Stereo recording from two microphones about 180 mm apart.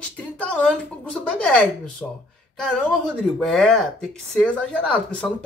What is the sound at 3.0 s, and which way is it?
Speech, centre (ahead or behind).